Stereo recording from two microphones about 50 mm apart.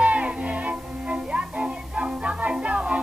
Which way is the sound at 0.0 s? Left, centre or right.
Right.